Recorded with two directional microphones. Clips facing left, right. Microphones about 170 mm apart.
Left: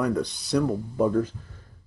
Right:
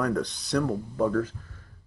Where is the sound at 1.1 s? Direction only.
20° left (ahead or behind).